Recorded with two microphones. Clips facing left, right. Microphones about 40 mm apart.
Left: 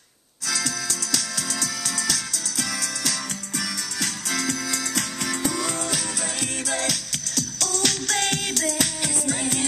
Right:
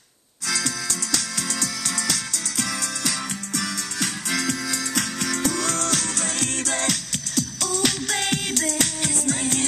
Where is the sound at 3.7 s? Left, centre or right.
Right.